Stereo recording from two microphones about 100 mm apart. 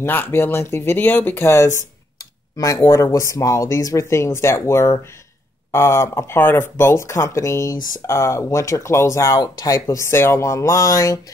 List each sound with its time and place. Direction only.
0.0 s speech: 20° left (ahead or behind)